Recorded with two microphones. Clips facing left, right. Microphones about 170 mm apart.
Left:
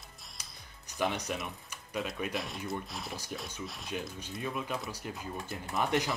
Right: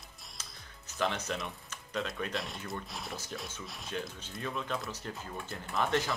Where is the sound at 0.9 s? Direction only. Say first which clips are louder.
Left 1 dB; 15° left (ahead or behind).